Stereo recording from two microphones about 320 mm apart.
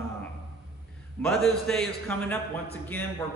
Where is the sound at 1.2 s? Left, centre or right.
Centre.